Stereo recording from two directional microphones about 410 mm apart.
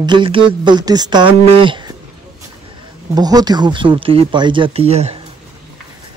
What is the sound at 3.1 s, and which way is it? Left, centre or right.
Speech, centre.